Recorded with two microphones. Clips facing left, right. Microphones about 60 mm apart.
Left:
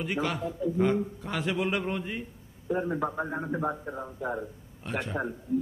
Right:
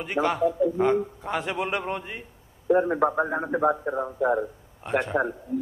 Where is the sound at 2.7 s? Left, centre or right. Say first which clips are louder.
Right 8 dB; right.